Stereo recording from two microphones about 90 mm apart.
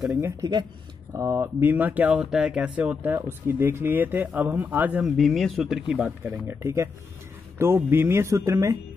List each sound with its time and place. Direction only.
0.2 s speech: 45° right (ahead or behind)
1.1 s speech: 35° right (ahead or behind)
1.6 s speech: 20° right (ahead or behind)
5.0 s speech: centre (ahead or behind); by 6.5 s 15° right (ahead or behind)
6.6 s speech: 35° right (ahead or behind)